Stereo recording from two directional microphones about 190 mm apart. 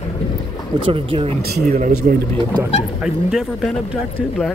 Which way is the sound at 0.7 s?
20° right (ahead or behind).